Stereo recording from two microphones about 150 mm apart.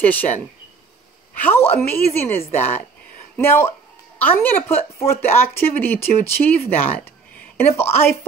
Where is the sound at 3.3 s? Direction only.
15° left (ahead or behind).